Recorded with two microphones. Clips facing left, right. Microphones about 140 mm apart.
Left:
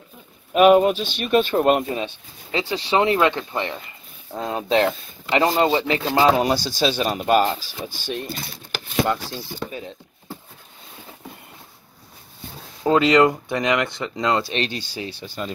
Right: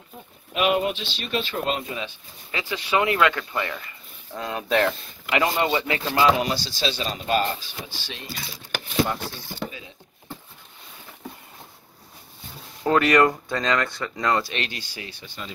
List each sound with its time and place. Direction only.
0.6 s speech: 45° left (ahead or behind)
2.7 s speech: 30° left (ahead or behind)
5.4 s speech: 35° left (ahead or behind)
6.8 s speech: 50° left (ahead or behind)
12.8 s speech: 20° left (ahead or behind); by 15.5 s 40° left (ahead or behind)